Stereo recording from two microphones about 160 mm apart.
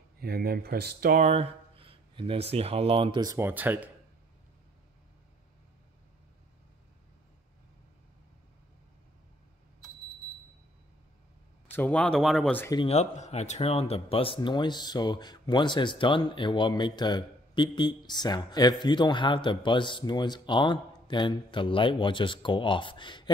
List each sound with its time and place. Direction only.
0.2 s speech: 75° right (ahead or behind)
1.2 s speech: 40° right (ahead or behind); by 3.9 s 10° right (ahead or behind)
11.7 s speech: 10° left (ahead or behind)
12.8 s speech: 40° left (ahead or behind)